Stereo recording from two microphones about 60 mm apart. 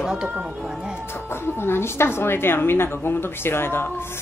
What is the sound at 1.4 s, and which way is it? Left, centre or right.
A woman's voice, left.